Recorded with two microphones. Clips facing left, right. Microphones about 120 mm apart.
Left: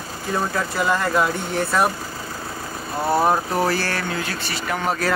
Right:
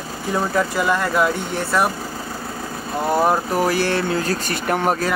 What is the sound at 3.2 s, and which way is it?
Speech, 10° right (ahead or behind).